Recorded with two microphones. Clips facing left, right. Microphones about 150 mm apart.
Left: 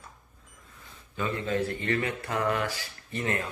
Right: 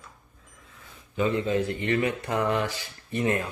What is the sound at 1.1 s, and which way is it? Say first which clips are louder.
Speech: right 5 dB; 20° right (ahead or behind).